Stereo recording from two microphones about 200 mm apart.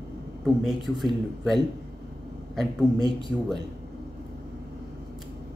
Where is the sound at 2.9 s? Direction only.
25° left (ahead or behind).